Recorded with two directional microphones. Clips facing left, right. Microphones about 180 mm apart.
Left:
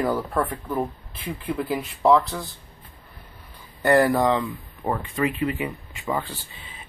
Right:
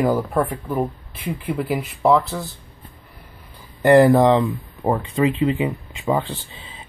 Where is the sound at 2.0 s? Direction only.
5° right (ahead or behind).